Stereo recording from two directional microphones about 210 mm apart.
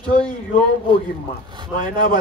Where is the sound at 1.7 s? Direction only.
40° left (ahead or behind).